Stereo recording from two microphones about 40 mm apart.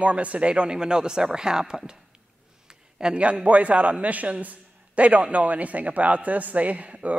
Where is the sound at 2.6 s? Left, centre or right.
Centre.